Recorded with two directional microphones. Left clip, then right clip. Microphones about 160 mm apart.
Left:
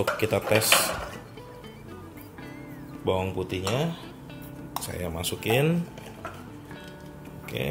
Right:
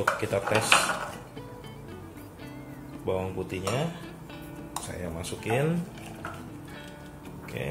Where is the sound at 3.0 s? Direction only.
65° left (ahead or behind).